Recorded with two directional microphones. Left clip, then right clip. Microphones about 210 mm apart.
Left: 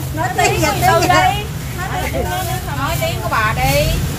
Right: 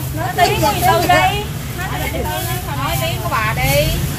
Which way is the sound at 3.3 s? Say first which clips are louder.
Left 1 dB; 20° left (ahead or behind).